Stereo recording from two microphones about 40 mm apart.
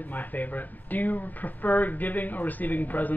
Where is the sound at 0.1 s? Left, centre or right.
Left.